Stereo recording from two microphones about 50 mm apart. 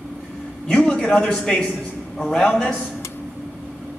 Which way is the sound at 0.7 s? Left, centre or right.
Left.